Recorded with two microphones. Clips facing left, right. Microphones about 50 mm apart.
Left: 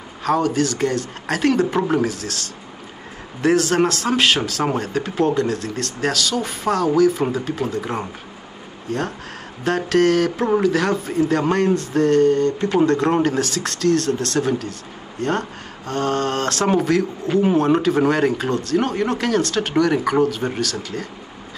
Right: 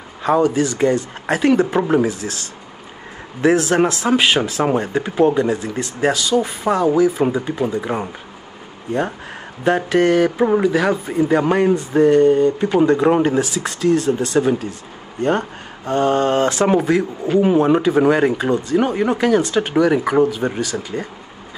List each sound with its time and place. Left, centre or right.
0.2 s speech: centre
3.3 s a man's voice: centre
9.7 s speech: centre